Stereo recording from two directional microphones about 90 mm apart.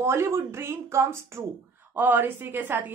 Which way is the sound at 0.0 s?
30° right (ahead or behind).